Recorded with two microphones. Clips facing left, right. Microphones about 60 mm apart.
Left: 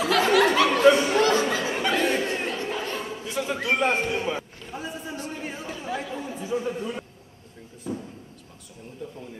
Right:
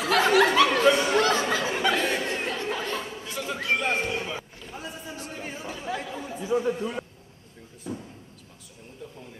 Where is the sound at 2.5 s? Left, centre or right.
Left.